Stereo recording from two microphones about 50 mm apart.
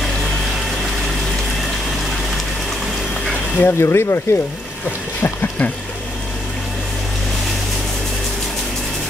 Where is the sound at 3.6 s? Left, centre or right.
Left.